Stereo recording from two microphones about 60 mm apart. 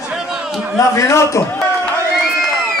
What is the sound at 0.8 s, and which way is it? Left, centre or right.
Speech, left.